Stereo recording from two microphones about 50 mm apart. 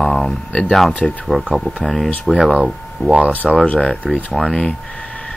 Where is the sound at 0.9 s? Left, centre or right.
Left.